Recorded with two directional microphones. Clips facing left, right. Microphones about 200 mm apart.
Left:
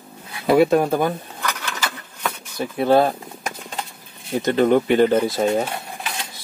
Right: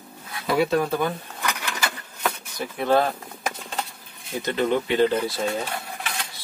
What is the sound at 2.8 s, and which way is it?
Speech, 35° left (ahead or behind).